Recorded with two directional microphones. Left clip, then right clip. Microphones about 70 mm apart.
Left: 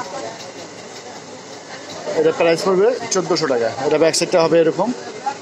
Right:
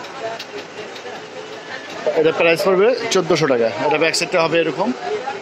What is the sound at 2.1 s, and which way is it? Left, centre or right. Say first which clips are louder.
Speech: even; left.